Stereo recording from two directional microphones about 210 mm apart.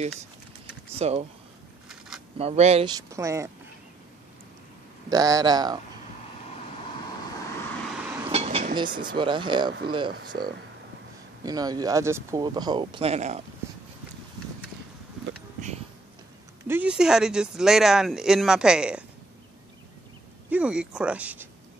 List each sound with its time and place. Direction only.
0.9 s speech: 30° right (ahead or behind)
1.9 s a sound: centre (ahead or behind)
2.3 s speech: 30° right (ahead or behind)
3.0 s speech: 15° right (ahead or behind)
5.1 s speech: 15° right (ahead or behind)
8.2 s speech: 30° right (ahead or behind)
16.6 s speech: 10° right (ahead or behind)
20.4 s speech: 5° right (ahead or behind)